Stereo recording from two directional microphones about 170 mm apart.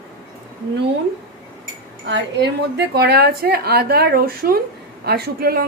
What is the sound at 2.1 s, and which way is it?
A woman's voice, 80° right.